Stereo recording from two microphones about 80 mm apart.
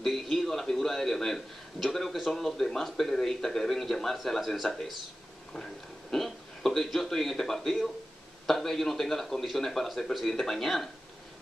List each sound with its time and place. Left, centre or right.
0.0 s a man's voice: centre